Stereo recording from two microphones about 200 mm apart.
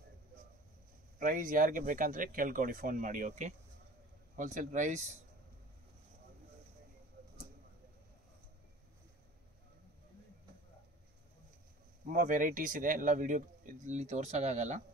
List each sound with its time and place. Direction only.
1.2 s speech: 40° right (ahead or behind)
12.1 s speech: 45° right (ahead or behind)